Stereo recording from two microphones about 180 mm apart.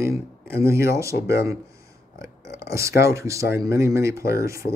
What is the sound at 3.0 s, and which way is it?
Speech, 15° right (ahead or behind).